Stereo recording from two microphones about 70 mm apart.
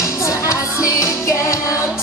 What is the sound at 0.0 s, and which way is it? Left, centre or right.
Music, left.